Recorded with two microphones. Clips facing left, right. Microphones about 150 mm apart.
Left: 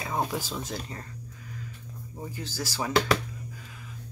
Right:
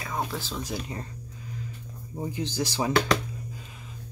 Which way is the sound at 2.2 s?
20° right (ahead or behind).